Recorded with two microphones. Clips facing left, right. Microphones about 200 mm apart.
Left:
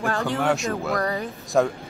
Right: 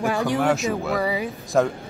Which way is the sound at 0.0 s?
15° right (ahead or behind).